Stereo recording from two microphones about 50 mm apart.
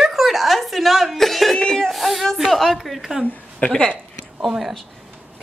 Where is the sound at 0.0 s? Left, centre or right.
Centre.